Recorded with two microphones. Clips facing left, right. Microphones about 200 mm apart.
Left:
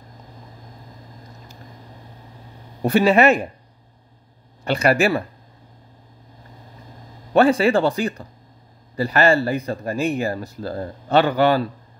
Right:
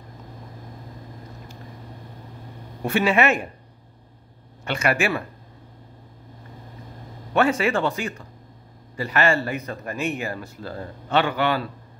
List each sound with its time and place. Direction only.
2.8 s speech: 35° left (ahead or behind)
4.6 s speech: 35° left (ahead or behind)
7.3 s speech: 35° left (ahead or behind)